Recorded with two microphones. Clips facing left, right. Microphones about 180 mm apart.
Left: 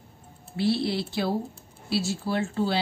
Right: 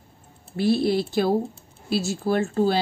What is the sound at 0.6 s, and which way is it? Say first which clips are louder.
A woman's voice: right 5 dB; 45° right (ahead or behind).